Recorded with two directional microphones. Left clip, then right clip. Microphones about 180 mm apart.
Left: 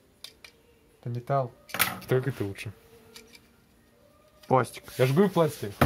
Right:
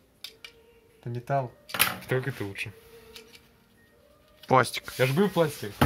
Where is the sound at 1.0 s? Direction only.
40° left (ahead or behind).